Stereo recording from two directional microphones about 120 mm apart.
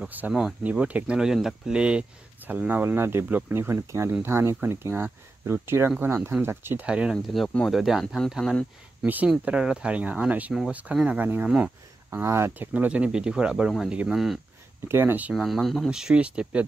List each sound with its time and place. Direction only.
0.3 s speech: centre (ahead or behind)
6.9 s speech: 5° right (ahead or behind)
7.4 s speech: 5° left (ahead or behind)
9.0 s speech: 15° right (ahead or behind)
12.7 s speech: 10° right (ahead or behind)
14.9 s speech: 20° right (ahead or behind)
15.3 s speech: centre (ahead or behind)